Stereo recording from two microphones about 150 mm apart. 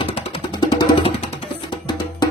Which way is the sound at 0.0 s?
35° left (ahead or behind).